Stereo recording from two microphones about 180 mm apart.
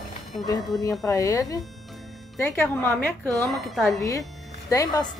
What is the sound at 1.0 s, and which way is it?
A woman's voice, 15° left (ahead or behind).